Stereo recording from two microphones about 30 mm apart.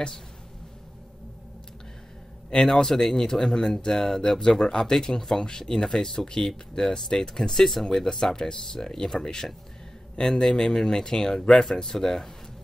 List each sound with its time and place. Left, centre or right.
2.6 s speech: centre
5.7 s speech: centre
5.9 s speech: left